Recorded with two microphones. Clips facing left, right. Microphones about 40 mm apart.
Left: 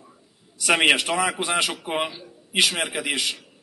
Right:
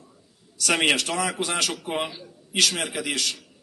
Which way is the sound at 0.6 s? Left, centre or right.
Centre.